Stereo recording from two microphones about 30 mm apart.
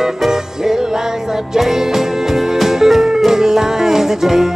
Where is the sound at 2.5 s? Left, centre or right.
Centre.